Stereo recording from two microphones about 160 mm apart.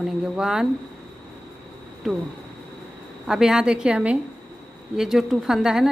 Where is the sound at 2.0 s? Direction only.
Centre (ahead or behind).